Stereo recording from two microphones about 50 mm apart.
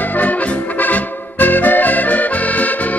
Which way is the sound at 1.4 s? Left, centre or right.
Left.